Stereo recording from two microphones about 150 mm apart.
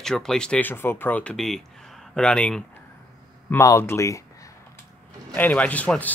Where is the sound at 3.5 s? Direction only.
20° left (ahead or behind).